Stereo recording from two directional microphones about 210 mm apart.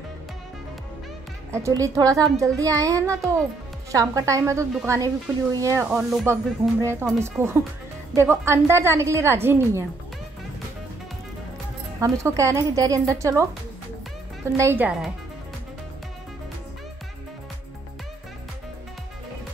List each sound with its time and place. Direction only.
1.5 s a woman's voice: 15° right (ahead or behind)
12.0 s a woman's voice: 15° right (ahead or behind)
14.6 s a woman's voice: 10° right (ahead or behind)